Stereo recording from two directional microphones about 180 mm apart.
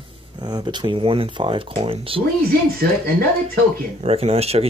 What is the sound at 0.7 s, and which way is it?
Speech, 30° right (ahead or behind).